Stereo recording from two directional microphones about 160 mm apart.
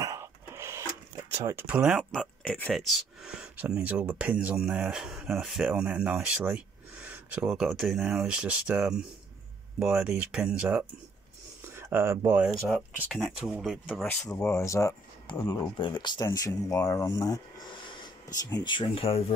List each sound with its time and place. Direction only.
0.0 s a sound: 15° right (ahead or behind)
1.3 s speech: 15° right (ahead or behind)
2.1 s speech: 10° left (ahead or behind); by 12.4 s 15° right (ahead or behind)
12.4 s speech: centre (ahead or behind)
14.3 s speech: 15° left (ahead or behind); by 19.2 s 35° left (ahead or behind)